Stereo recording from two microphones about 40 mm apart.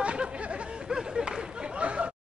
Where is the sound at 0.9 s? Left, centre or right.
Centre.